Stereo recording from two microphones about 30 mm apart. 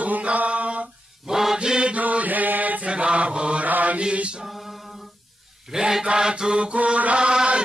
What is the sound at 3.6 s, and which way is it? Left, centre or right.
Mantra, right.